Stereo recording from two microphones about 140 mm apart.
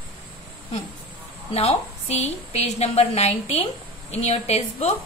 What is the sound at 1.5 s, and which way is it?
A woman's voice, 50° left (ahead or behind).